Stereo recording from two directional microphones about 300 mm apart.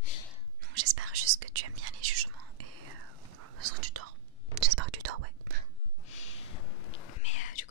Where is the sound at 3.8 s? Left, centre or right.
Right.